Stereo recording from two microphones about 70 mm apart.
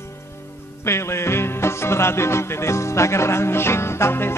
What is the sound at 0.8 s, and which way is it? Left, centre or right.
Music, left.